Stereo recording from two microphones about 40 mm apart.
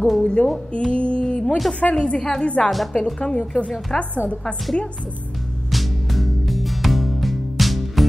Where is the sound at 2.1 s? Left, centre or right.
Centre.